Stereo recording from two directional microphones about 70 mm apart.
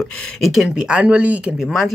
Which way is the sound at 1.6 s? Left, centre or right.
Centre.